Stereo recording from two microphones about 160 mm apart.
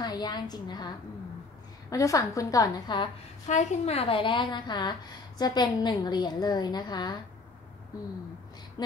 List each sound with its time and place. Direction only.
0.0 s a woman's voice: 25° left (ahead or behind)
3.4 s a woman's voice: 45° left (ahead or behind); by 7.2 s 25° left (ahead or behind)
8.8 s a woman's voice: 25° left (ahead or behind)